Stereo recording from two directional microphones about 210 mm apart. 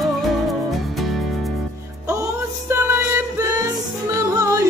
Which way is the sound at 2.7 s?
10° right (ahead or behind).